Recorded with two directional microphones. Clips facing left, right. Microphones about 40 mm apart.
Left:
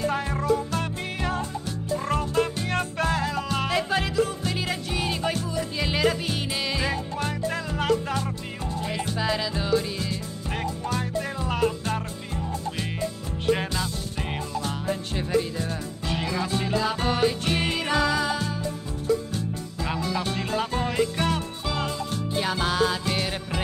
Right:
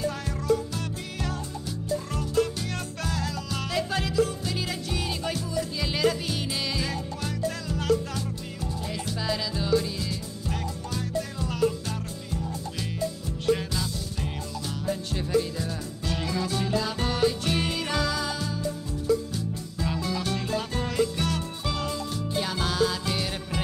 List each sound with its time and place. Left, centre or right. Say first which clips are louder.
0.0 s music: left 5 dB; left
2.0 s music: left 3 dB; left
13.5 s music: left 1 dB; left